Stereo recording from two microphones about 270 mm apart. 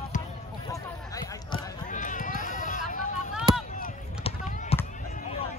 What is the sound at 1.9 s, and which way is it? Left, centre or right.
Clip-clop, left.